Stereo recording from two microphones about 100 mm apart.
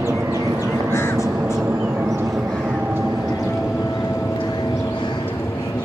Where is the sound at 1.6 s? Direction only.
15° right (ahead or behind).